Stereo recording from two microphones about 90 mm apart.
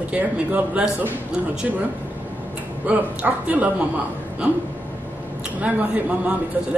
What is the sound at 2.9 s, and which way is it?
Speech, 15° right (ahead or behind).